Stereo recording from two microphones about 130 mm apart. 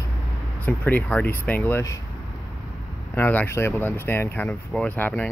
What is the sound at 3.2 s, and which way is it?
Speech, 15° left (ahead or behind).